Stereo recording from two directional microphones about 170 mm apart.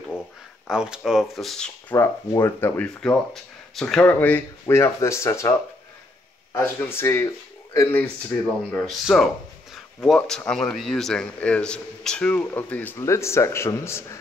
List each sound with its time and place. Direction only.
0.7 s speech: 5° right (ahead or behind)
2.0 s a man's voice: 15° left (ahead or behind)
6.5 s a man's voice: 15° left (ahead or behind)
8.7 s a man's voice: centre (ahead or behind)